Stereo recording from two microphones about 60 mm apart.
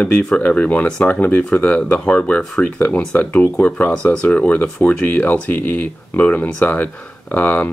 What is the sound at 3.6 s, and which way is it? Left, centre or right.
Speech, left.